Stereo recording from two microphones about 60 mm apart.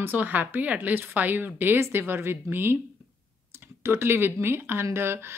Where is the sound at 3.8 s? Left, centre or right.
Right.